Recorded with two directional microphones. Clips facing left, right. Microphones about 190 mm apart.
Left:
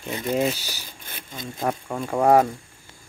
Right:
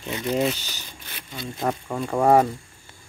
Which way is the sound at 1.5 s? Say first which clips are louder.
Even; centre (ahead or behind).